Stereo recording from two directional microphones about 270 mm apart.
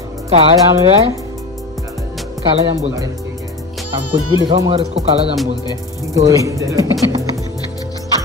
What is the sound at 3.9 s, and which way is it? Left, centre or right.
Speech, right.